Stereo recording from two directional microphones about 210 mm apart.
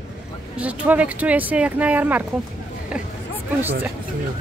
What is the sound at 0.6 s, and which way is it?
Speech, 5° right (ahead or behind).